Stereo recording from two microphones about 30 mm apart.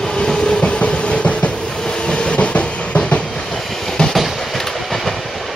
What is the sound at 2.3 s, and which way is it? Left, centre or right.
Train, left.